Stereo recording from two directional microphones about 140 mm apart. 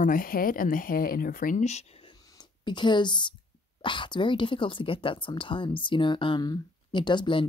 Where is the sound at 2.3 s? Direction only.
35° left (ahead or behind).